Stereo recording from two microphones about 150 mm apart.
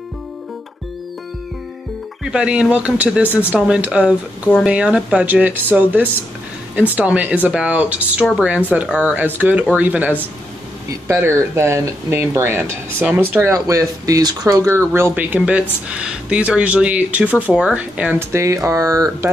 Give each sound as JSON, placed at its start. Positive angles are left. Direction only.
{"t": 2.3, "sound": "speech", "side_deg": -5}